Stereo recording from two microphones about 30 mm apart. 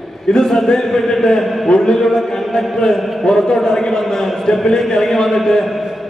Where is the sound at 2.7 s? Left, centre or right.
Left.